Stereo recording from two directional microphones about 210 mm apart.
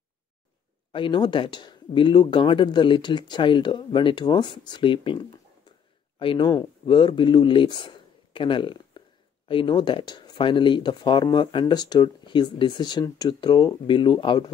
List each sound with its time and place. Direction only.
0.9 s speech: 25° left (ahead or behind)